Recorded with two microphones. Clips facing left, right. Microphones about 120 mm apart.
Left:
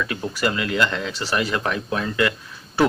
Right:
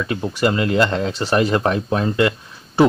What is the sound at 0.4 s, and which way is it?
Speech, 30° right (ahead or behind).